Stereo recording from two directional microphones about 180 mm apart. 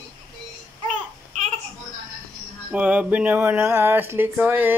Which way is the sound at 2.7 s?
10° right (ahead or behind).